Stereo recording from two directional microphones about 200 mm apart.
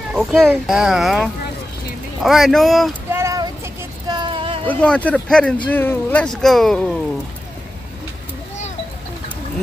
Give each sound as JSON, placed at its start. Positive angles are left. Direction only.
{"t": 0.1, "sound": "speech", "side_deg": 0}
{"t": 3.1, "sound": "child singing", "side_deg": -15}
{"t": 4.6, "sound": "speech", "side_deg": 5}